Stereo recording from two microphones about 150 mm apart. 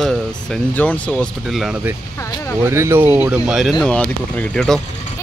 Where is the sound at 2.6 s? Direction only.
15° right (ahead or behind).